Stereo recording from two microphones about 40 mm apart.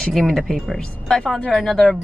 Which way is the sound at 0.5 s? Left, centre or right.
Centre.